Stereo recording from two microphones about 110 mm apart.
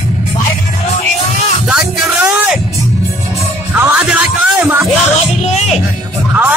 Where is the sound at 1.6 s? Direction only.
10° right (ahead or behind).